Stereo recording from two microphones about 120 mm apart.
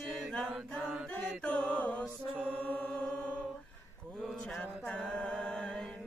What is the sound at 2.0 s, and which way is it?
Mantra, 10° right (ahead or behind).